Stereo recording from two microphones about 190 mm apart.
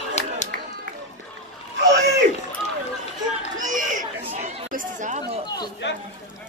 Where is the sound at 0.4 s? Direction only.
40° left (ahead or behind).